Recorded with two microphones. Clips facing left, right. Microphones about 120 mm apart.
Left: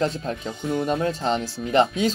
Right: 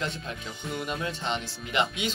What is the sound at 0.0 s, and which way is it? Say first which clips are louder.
Speech: left 9 dB; 35° left (ahead or behind).